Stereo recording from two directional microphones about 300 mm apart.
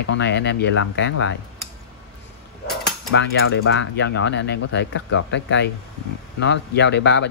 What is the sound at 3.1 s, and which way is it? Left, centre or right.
Speech, left.